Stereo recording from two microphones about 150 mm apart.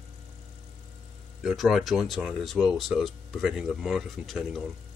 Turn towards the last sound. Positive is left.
turn(degrees=0)  # may be behind; listen again after turning